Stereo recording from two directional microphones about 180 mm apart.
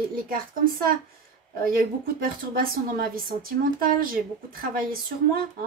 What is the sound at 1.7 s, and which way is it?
A woman's voice, 55° right (ahead or behind).